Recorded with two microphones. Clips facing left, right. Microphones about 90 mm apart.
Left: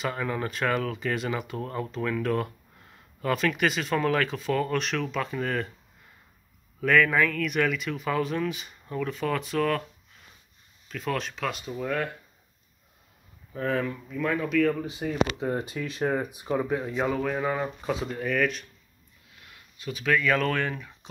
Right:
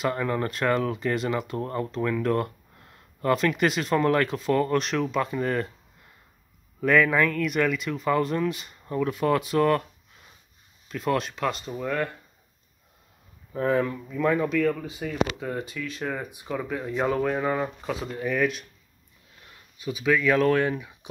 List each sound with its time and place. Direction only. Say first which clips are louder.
0.0 s speech: right 3 dB; centre (ahead or behind)
6.8 s speech: right 1 dB; 5° right (ahead or behind)
8.9 s speech: right 5 dB; 10° right (ahead or behind)
10.9 s speech: right 4 dB; 5° right (ahead or behind)
13.7 s speech: right 4 dB; 5° right (ahead or behind)
14.8 s speech: left 1 dB; 20° left (ahead or behind)
16.2 s speech: left 4 dB; 15° left (ahead or behind)
16.8 s speech: right 2 dB; centre (ahead or behind)
19.8 s speech: right 2 dB; 10° right (ahead or behind)